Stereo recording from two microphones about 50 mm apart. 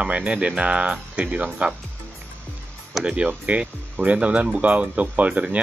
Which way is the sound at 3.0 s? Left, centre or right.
Right.